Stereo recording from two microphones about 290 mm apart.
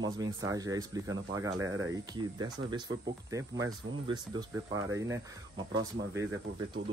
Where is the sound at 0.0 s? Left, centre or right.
Centre.